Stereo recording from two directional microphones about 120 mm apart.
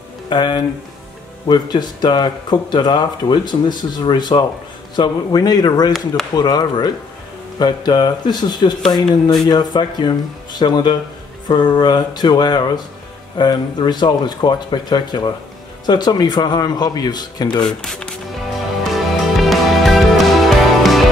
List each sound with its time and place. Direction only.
0.3 s speech: 40° left (ahead or behind)
17.6 s speech: 5° left (ahead or behind)
18.9 s music: centre (ahead or behind)